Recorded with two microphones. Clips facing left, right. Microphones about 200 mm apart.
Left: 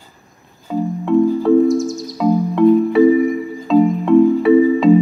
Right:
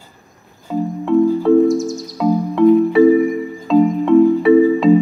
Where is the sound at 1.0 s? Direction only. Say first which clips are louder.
Right 1 dB; centre (ahead or behind).